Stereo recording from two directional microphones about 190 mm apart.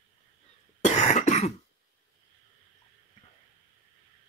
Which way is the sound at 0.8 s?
40° left (ahead or behind).